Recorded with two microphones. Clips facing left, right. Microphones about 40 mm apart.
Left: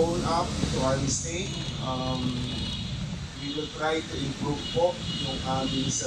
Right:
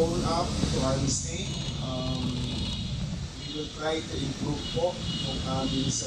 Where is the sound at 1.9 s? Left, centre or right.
Left.